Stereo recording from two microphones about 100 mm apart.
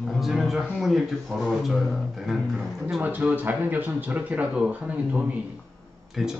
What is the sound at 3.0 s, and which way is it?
A man's voice, 20° right (ahead or behind).